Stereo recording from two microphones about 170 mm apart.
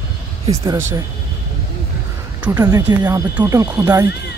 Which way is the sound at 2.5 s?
15° right (ahead or behind).